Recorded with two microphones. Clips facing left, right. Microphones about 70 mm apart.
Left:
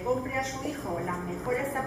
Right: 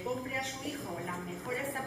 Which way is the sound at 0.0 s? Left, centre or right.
Centre.